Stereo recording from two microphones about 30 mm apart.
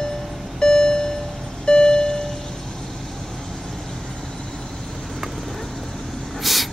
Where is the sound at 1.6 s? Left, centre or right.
Left.